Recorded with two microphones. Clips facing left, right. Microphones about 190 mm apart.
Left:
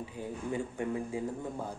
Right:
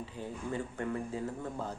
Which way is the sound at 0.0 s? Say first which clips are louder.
Left 2 dB; 15° left (ahead or behind).